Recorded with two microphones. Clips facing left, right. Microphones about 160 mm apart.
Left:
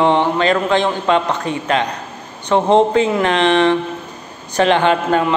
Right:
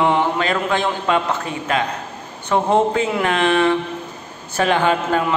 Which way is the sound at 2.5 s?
20° left (ahead or behind).